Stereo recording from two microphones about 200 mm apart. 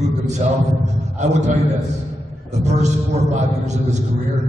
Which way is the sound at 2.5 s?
35° right (ahead or behind).